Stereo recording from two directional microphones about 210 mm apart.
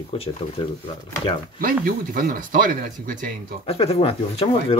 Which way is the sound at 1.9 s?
45° right (ahead or behind).